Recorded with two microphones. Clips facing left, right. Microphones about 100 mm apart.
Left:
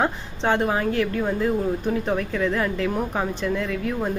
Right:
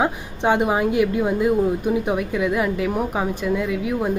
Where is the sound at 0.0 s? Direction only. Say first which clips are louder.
Right 3 dB; 15° right (ahead or behind).